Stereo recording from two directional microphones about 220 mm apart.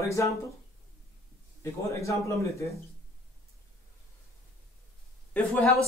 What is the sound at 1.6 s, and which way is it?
A man's voice, 15° left (ahead or behind).